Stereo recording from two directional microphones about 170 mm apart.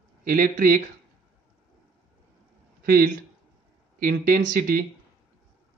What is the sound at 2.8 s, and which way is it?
Speech, 60° right (ahead or behind).